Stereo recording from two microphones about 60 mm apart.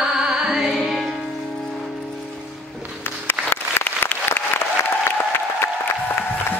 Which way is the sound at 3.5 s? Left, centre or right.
Left.